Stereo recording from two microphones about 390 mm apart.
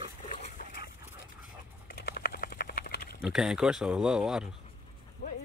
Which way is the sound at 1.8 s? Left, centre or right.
Left.